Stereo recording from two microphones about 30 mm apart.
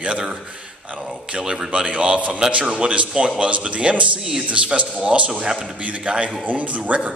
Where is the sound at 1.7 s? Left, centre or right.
Right.